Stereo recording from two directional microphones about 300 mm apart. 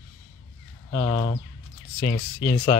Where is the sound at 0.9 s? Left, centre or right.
Centre.